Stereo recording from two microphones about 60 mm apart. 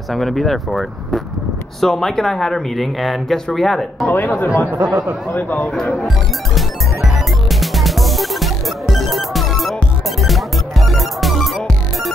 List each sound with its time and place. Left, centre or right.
0.1 s speech: centre
4.1 s speech: left
4.6 s speech: right
5.3 s speech: left
5.9 s music: centre